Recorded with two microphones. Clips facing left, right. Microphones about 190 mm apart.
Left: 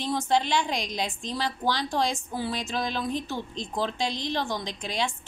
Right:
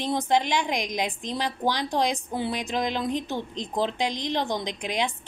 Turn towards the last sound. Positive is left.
turn(degrees=-15)  # may be behind; listen again after turning